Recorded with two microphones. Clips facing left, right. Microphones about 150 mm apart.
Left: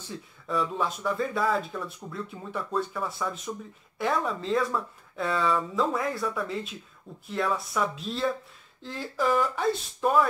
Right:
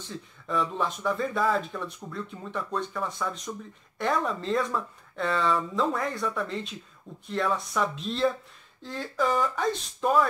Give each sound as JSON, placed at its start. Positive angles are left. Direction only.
{"t": 0.5, "sound": "speech", "side_deg": 0}